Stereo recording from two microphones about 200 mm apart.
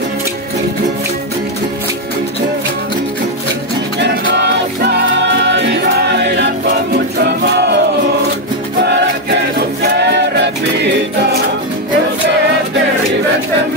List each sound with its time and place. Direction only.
4.0 s music: 60° right (ahead or behind)
9.9 s music: 55° right (ahead or behind)